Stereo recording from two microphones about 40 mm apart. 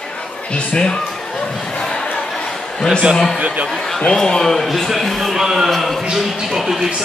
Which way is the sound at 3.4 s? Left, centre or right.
Right.